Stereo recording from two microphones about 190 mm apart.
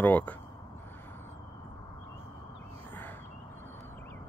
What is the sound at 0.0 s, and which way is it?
Speech, 10° left (ahead or behind).